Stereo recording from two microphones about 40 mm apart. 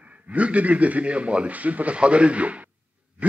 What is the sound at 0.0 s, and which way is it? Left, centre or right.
Speech, right.